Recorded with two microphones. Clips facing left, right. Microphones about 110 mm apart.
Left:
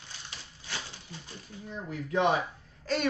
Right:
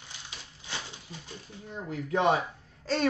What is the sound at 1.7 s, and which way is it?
Speech, 25° right (ahead or behind).